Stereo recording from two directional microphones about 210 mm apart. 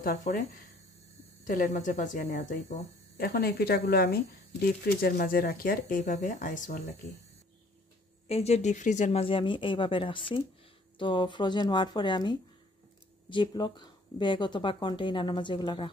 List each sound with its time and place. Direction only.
0.0 s speech: 40° left (ahead or behind)
8.3 s speech: 30° left (ahead or behind)